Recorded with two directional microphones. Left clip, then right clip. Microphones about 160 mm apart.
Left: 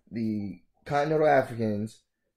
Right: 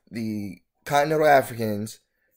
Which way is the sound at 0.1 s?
15° right (ahead or behind).